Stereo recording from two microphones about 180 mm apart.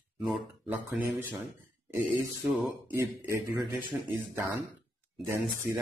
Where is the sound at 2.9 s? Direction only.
15° right (ahead or behind).